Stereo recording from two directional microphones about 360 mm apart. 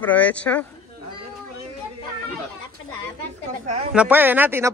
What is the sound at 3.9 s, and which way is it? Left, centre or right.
Speech, centre.